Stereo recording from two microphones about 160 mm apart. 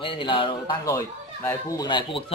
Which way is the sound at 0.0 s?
30° left (ahead or behind).